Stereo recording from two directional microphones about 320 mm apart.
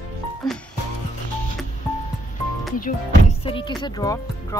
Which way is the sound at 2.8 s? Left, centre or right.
Centre.